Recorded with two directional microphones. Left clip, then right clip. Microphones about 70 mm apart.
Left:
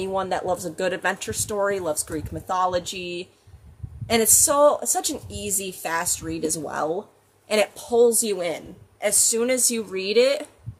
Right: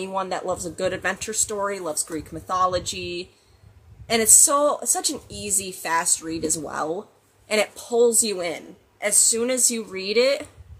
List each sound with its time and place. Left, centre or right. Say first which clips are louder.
0.0 s a woman's voice: left 2 dB; left